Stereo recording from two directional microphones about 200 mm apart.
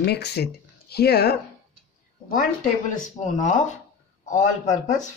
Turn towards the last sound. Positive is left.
turn(degrees=35)  # may be behind; listen again after turning